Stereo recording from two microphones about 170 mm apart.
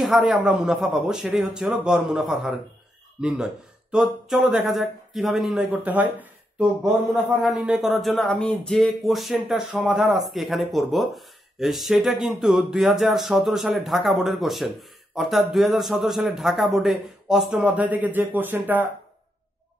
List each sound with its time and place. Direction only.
0.0 s speech: 5° right (ahead or behind)
7.4 s speech: 5° right (ahead or behind)